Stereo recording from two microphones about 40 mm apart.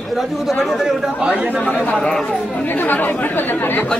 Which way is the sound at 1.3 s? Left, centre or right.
Right.